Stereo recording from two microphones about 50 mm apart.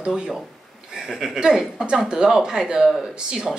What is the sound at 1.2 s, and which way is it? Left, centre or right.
Speech, centre.